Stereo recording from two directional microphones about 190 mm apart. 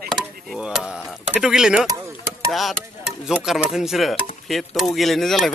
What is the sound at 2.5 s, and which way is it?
Speech, centre (ahead or behind).